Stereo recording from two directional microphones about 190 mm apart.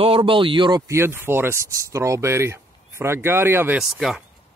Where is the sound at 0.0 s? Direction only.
30° right (ahead or behind); by 4.2 s centre (ahead or behind).